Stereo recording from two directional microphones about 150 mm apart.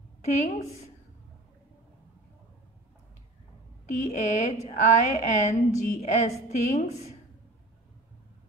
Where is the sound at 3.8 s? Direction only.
50° left (ahead or behind).